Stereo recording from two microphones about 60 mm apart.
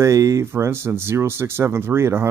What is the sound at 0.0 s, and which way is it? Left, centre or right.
Speech, right.